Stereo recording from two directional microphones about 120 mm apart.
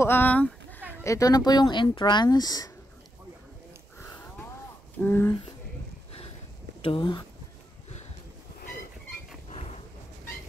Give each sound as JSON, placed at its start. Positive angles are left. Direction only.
{"t": 0.0, "sound": "a sound", "side_deg": 15}
{"t": 1.0, "sound": "speech", "side_deg": 30}
{"t": 4.0, "sound": "sniff", "side_deg": 20}
{"t": 5.0, "sound": "speech", "side_deg": 20}
{"t": 7.0, "sound": "speech", "side_deg": 40}